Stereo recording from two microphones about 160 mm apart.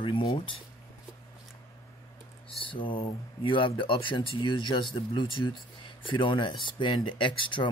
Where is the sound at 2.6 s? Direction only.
30° left (ahead or behind).